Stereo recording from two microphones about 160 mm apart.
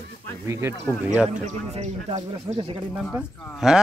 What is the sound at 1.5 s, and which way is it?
Speech, 45° right (ahead or behind).